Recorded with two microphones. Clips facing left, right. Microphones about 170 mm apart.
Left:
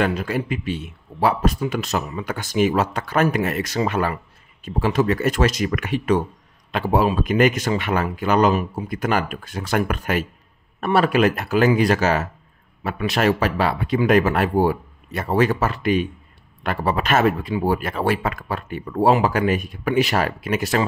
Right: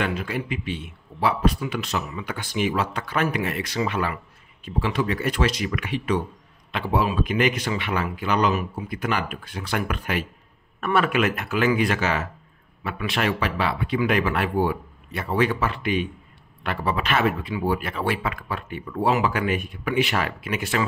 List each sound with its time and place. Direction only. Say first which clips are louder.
0.0 s speech: left 5 dB; 40° left (ahead or behind)